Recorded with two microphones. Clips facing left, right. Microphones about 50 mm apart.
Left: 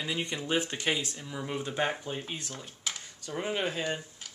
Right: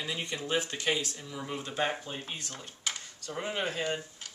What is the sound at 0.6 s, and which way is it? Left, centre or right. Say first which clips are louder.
Speech: left 2 dB; left.